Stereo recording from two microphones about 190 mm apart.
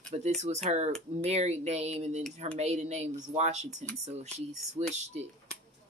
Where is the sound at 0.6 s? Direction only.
35° right (ahead or behind).